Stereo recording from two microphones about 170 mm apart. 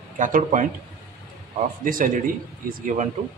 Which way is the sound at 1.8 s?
55° right (ahead or behind).